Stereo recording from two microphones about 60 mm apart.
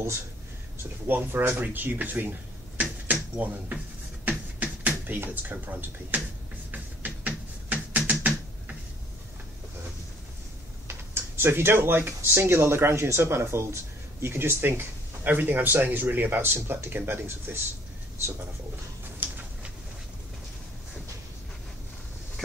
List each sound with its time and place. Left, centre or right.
1.0 s speech: right
2.8 s finger snapping: right
10.9 s speech: right
19.2 s a sound: right